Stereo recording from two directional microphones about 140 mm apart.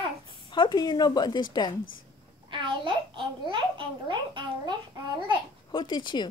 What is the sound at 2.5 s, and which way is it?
A child's voice, 35° right (ahead or behind).